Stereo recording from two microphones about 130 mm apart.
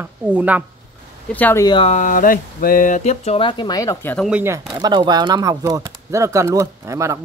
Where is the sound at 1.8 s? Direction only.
55° left (ahead or behind).